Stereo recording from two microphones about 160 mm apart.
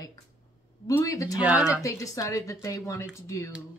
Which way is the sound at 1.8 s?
20° left (ahead or behind).